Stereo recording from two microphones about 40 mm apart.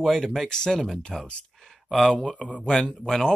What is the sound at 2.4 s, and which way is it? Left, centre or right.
Speech, left.